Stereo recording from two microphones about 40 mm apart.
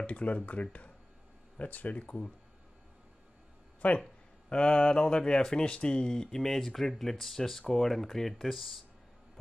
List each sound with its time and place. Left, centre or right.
0.0 s speech: left
3.8 s speech: left
4.5 s speech: left; by 8.7 s centre